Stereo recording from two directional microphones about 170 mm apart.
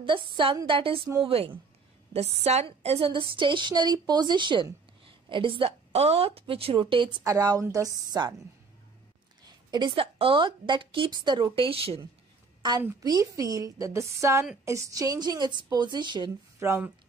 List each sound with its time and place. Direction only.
0.0 s a woman's voice: 30° right (ahead or behind)
9.7 s a woman's voice: 25° right (ahead or behind)
12.8 s a woman's voice: 20° right (ahead or behind)